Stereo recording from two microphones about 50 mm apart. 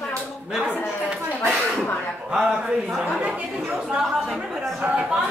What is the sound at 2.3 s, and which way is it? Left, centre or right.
Speech, centre.